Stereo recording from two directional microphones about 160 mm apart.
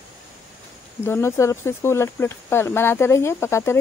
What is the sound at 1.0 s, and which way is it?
Speech, 15° left (ahead or behind).